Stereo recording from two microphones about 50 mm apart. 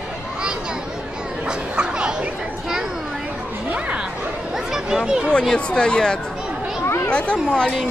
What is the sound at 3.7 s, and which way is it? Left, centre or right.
Chatter, right.